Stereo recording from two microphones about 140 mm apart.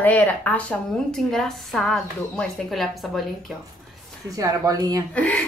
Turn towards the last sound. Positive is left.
turn(degrees=10)  # may be behind; listen again after turning